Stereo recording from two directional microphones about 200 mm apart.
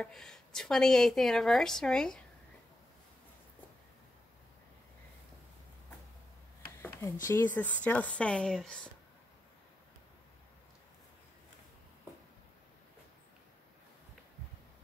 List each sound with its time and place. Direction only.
0.0 s a woman's voice: centre (ahead or behind)
6.8 s speech: 15° left (ahead or behind)